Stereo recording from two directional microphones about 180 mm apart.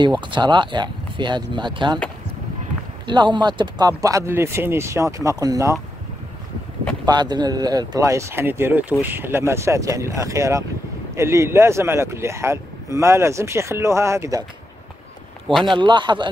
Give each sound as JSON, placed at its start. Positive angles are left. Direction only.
{"t": 0.0, "sound": "speech", "side_deg": -25}
{"t": 3.1, "sound": "speech", "side_deg": -25}
{"t": 7.1, "sound": "speech", "side_deg": -25}
{"t": 15.4, "sound": "a man's voice", "side_deg": 0}
{"t": 15.7, "sound": "speech", "side_deg": -25}